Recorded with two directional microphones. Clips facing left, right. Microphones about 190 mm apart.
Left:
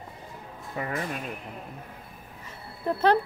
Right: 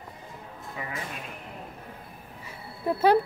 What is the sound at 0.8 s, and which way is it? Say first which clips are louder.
Speech: left 6 dB; 45° left (ahead or behind).